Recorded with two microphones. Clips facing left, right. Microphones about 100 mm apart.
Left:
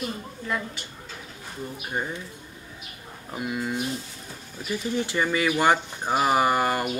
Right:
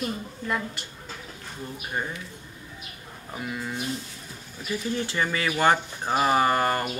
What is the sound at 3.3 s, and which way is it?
Speech, 15° left (ahead or behind).